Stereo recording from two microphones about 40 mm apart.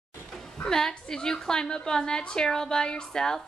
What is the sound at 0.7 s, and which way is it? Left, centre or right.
A woman's voice, centre.